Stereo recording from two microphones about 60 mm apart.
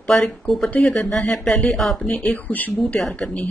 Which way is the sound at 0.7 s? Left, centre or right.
Left.